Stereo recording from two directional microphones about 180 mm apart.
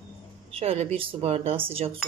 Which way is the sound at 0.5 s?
35° right (ahead or behind).